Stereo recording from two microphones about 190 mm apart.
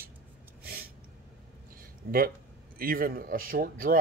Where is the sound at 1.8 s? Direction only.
50° right (ahead or behind).